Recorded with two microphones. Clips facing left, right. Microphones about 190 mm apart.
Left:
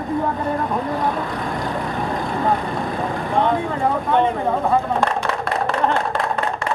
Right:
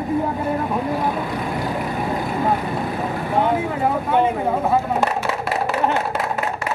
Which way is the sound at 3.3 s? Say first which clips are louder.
Even; 5° right (ahead or behind).